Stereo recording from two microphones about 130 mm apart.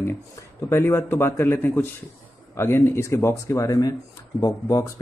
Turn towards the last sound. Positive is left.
turn(degrees=25)  # may be behind; listen again after turning